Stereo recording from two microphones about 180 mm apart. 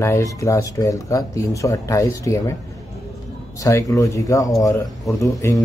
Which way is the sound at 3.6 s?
15° left (ahead or behind).